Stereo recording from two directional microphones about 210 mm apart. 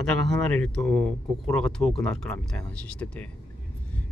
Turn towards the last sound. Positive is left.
turn(degrees=5)  # may be behind; listen again after turning